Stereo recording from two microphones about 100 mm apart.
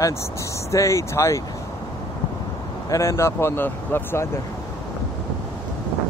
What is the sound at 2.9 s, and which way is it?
Speech, 30° left (ahead or behind).